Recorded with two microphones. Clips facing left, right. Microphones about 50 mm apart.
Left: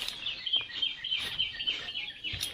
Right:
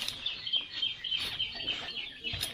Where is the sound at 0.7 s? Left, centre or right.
Centre.